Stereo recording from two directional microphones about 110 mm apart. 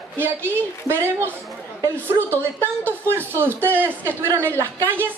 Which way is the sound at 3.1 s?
20° right (ahead or behind).